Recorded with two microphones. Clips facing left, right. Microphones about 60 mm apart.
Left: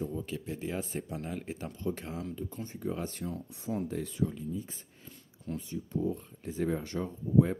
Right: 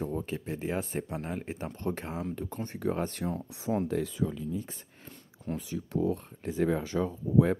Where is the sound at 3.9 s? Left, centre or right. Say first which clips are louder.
Right 5 dB; right.